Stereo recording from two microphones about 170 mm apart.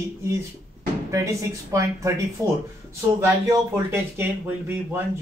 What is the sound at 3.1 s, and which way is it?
Speech, 15° right (ahead or behind).